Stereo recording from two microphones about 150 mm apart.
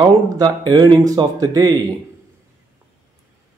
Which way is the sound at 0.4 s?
25° right (ahead or behind).